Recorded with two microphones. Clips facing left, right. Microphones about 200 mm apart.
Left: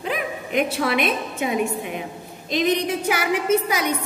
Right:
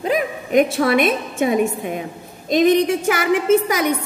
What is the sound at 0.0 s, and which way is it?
A woman's voice, 45° right (ahead or behind).